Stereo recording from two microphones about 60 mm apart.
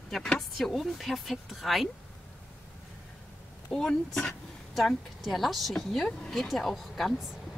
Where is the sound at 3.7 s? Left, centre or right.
Centre.